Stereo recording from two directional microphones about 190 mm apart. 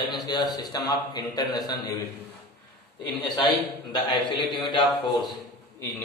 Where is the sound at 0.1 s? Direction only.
20° left (ahead or behind).